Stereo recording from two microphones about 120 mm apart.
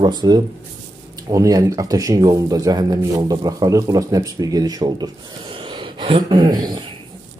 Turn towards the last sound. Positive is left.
turn(degrees=-35)  # may be behind; listen again after turning